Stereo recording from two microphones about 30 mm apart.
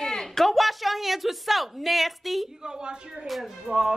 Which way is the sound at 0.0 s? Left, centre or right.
Centre.